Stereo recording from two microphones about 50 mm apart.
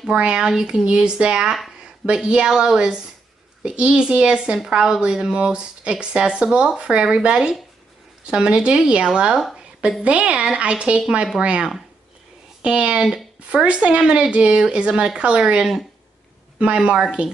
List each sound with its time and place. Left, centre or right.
0.1 s speech: centre
12.6 s speech: right
14.0 s speech: centre